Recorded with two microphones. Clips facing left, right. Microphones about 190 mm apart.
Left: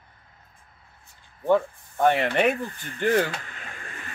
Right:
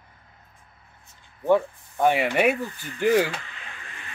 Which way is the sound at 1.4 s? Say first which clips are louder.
Right 1 dB; 10° right (ahead or behind).